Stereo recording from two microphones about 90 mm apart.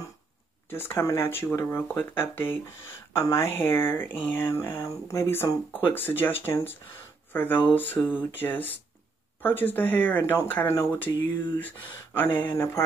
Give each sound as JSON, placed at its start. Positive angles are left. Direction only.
{"t": 0.7, "sound": "speech", "side_deg": 25}
{"t": 4.5, "sound": "speech", "side_deg": 35}